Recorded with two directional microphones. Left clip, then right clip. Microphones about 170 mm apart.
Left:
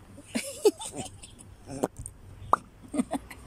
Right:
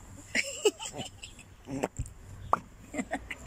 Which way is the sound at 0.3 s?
10° left (ahead or behind).